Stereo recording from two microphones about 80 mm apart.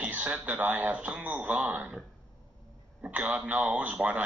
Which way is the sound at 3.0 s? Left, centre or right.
Centre.